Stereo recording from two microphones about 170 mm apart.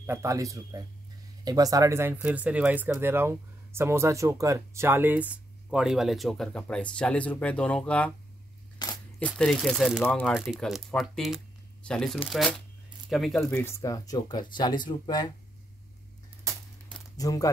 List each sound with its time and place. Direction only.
0.0 s speech: 15° right (ahead or behind); by 8.1 s 5° left (ahead or behind)
8.8 s a sound: 25° left (ahead or behind)
9.2 s speech: 5° left (ahead or behind)
10.3 s speech: centre (ahead or behind)
13.6 s speech: 15° left (ahead or behind)
17.2 s speech: 20° left (ahead or behind)